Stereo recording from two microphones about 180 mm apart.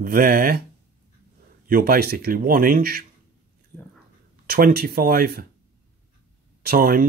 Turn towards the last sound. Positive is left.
turn(degrees=-55)  # may be behind; listen again after turning